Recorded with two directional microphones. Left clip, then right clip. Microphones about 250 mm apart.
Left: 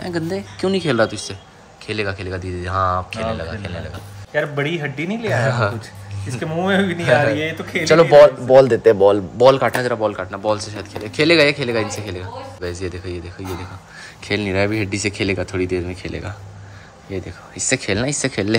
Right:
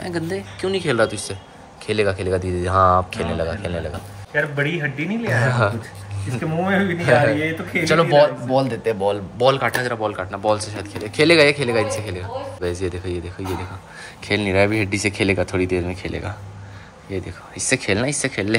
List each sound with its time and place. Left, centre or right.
0.0 s speech: centre
4.3 s speech: left
5.4 s speech: centre
6.4 s speech: left
7.0 s speech: centre
7.3 s speech: centre